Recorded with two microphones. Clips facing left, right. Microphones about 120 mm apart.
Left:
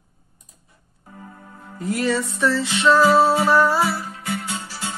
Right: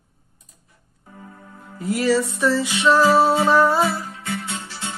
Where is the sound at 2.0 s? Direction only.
10° right (ahead or behind).